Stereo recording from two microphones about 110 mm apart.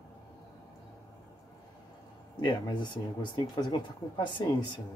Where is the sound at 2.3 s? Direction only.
40° left (ahead or behind).